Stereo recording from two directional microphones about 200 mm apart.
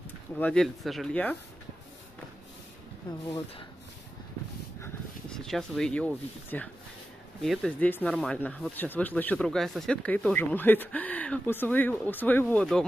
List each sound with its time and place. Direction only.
0.4 s speech: 5° left (ahead or behind)
3.1 s speech: 20° left (ahead or behind)
4.8 s speech: 5° left (ahead or behind)